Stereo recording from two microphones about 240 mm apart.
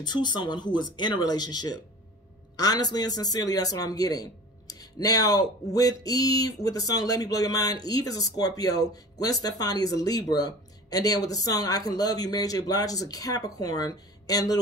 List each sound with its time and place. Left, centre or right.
0.0 s a man's voice: centre